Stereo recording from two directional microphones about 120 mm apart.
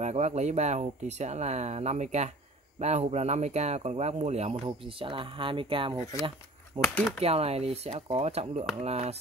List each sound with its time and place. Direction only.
0.0 s speech: 70° right (ahead or behind); by 6.9 s 45° right (ahead or behind)
7.2 s speech: 60° right (ahead or behind)